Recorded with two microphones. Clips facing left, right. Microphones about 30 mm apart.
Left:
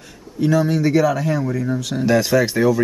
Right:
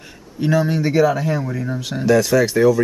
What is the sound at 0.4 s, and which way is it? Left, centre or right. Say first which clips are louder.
Speech: left 1 dB; centre.